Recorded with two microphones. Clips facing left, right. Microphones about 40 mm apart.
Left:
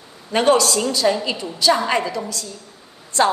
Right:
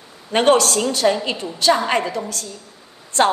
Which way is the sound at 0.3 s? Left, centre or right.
Right.